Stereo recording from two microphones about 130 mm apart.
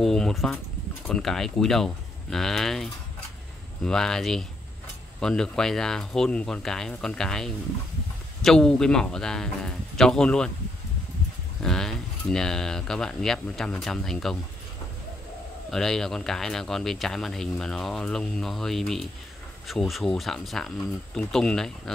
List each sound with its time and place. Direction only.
0.0 s a sound: 5° left (ahead or behind)
1.0 s speech: 5° left (ahead or behind)
11.6 s speech: 5° left (ahead or behind)
15.7 s speech: centre (ahead or behind)